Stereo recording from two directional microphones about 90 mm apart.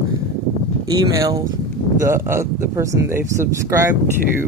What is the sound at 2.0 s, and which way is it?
Speech, 30° right (ahead or behind).